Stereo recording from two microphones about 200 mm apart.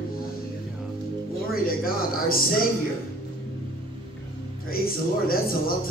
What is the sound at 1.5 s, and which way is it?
Speech, 45° left (ahead or behind).